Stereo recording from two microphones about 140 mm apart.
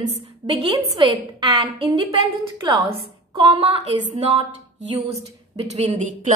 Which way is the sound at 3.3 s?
35° right (ahead or behind).